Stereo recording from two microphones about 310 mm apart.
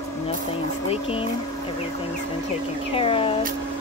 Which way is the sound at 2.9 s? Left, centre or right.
Centre.